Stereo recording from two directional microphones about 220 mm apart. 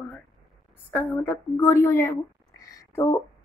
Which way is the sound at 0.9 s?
10° left (ahead or behind).